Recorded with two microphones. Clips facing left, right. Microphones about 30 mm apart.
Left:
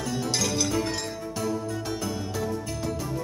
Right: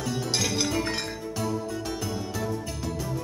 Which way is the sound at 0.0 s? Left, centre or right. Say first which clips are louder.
Left 1 dB; centre.